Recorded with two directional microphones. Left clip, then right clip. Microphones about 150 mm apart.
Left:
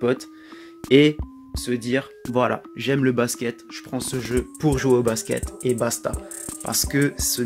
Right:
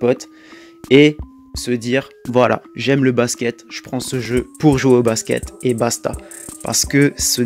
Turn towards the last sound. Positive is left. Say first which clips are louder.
# right 7 dB
turn(degrees=-50)  # may be behind; listen again after turning